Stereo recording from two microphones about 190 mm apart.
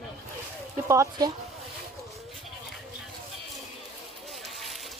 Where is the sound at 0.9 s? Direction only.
15° right (ahead or behind).